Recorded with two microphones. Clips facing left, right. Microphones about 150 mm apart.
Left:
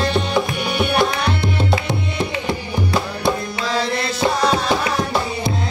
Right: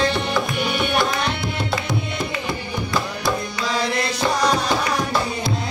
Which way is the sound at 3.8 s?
30° left (ahead or behind).